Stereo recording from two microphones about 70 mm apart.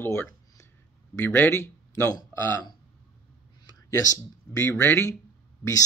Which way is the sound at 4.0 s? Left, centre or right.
Left.